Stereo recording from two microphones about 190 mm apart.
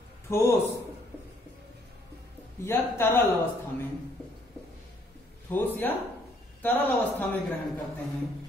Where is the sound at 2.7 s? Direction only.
10° left (ahead or behind).